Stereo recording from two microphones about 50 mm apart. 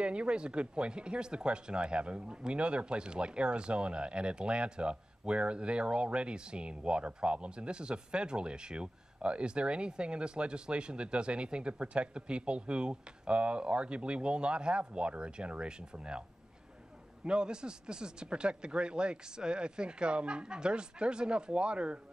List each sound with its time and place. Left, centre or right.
0.0 s speech: right